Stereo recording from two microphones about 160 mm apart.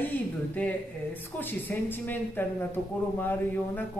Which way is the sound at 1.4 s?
10° left (ahead or behind).